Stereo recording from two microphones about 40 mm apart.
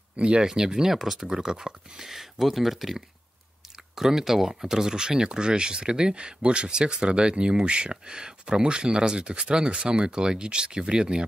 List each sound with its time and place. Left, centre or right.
0.2 s speech: right; by 1.4 s centre
1.4 s speech: centre